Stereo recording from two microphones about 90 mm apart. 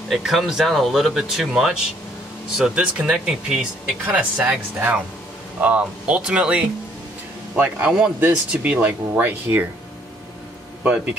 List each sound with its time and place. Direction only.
0.1 s speech: centre (ahead or behind); by 9.7 s 20° right (ahead or behind)
10.8 s speech: 15° right (ahead or behind)